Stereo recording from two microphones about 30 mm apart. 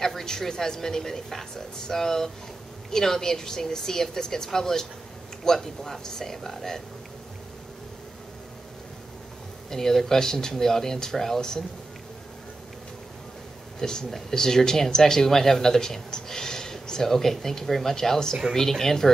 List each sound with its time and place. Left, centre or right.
0.0 s speech: centre
9.7 s speech: centre
13.7 s speech: left